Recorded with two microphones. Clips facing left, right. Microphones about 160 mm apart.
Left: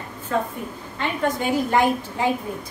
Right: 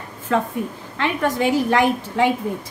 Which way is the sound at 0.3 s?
90° right.